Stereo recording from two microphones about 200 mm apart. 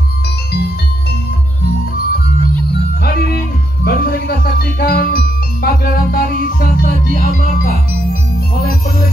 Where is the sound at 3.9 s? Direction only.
50° left (ahead or behind).